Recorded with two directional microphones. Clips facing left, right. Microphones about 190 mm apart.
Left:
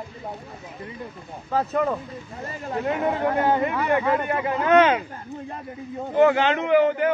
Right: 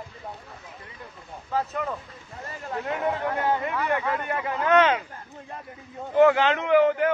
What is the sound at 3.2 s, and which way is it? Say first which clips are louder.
Speech: left 5 dB; 45° left (ahead or behind).